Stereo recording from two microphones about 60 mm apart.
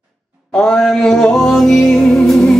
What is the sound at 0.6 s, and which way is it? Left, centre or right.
Music, centre.